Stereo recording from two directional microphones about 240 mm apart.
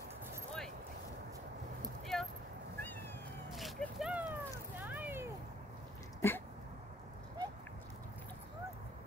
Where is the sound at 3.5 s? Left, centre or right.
Centre.